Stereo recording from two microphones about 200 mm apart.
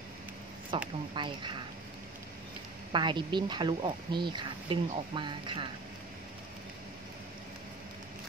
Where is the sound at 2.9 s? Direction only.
25° right (ahead or behind).